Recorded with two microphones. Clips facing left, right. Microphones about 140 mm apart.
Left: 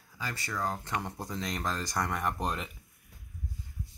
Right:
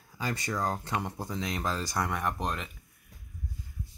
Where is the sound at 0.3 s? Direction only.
20° right (ahead or behind).